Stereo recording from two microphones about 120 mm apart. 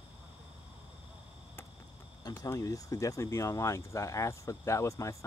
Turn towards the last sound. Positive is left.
turn(degrees=25)  # may be behind; listen again after turning